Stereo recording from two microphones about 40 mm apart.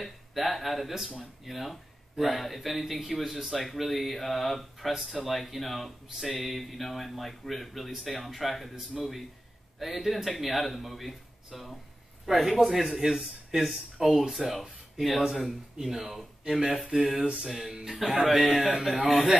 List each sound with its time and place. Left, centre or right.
0.0 s speech: centre
17.2 s speech: centre